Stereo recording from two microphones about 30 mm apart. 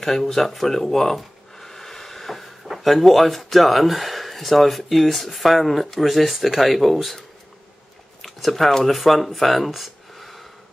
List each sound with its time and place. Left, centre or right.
0.0 s speech: centre
8.2 s a sound: centre
8.8 s speech: centre